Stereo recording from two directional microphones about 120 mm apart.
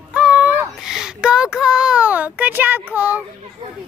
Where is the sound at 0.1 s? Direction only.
10° right (ahead or behind).